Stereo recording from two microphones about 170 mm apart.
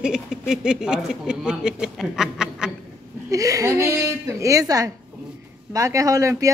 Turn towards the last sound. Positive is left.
turn(degrees=-20)  # may be behind; listen again after turning